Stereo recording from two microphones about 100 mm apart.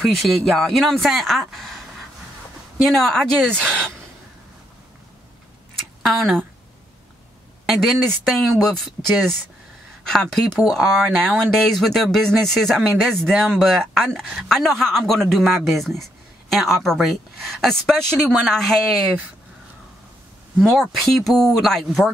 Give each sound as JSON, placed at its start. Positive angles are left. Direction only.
{"t": 0.0, "sound": "speech", "side_deg": 0}
{"t": 3.0, "sound": "speech", "side_deg": 5}
{"t": 6.0, "sound": "speech", "side_deg": 0}
{"t": 7.6, "sound": "speech", "side_deg": 0}
{"t": 20.5, "sound": "speech", "side_deg": 0}